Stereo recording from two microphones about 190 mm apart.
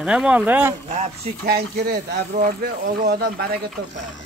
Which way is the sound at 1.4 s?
55° right (ahead or behind).